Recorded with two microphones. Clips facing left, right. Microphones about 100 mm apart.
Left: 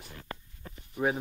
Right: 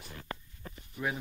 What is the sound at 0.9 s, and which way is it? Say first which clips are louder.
Speech: left 6 dB; 35° left (ahead or behind).